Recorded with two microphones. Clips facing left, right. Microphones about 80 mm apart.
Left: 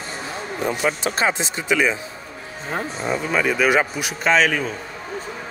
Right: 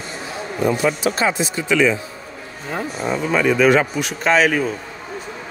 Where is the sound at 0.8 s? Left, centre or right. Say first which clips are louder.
Right 3 dB; left.